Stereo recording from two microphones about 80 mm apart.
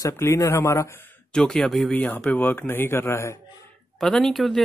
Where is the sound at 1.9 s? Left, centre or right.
Centre; by 3.3 s left.